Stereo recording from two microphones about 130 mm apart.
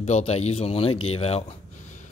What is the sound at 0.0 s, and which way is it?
Speech, 55° left (ahead or behind).